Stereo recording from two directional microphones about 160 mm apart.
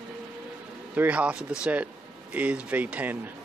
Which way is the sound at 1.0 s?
10° right (ahead or behind).